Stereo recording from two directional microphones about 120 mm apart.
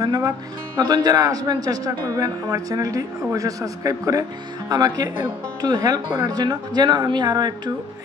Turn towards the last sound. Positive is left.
turn(degrees=-35)  # may be behind; listen again after turning